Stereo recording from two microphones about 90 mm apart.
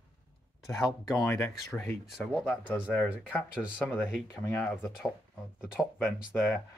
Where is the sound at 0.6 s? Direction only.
40° left (ahead or behind).